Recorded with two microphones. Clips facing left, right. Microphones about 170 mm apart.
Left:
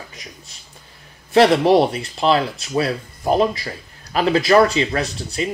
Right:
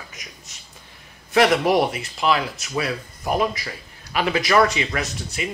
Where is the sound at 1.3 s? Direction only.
30° left (ahead or behind).